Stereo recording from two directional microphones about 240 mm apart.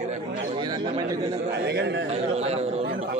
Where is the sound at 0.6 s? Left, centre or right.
Centre.